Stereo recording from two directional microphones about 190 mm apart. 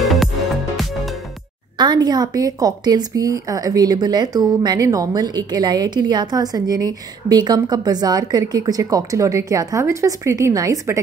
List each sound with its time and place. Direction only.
0.0 s music: centre (ahead or behind)
1.8 s a woman's voice: 20° right (ahead or behind)